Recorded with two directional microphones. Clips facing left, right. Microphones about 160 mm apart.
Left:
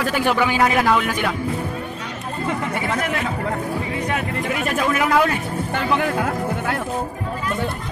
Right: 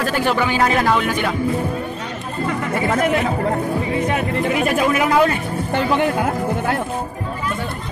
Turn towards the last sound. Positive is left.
turn(degrees=-25)  # may be behind; listen again after turning